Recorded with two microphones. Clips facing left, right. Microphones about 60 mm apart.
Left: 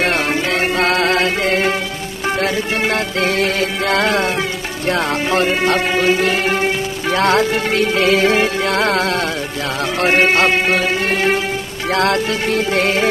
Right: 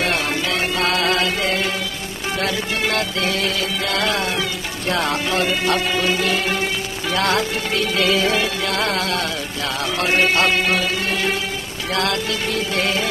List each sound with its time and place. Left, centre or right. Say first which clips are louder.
0.0 s music: left 4 dB; left